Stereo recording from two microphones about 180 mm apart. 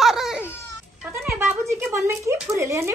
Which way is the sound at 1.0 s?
10° right (ahead or behind).